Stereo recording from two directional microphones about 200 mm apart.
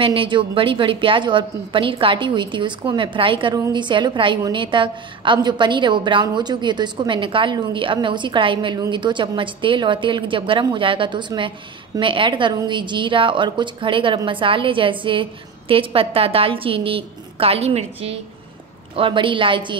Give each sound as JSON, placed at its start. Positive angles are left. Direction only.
{"t": 0.0, "sound": "a woman's voice", "side_deg": -25}